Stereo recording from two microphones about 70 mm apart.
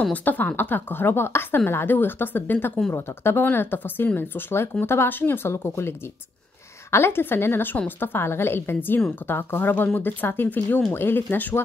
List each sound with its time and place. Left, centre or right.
0.1 s a woman's voice: left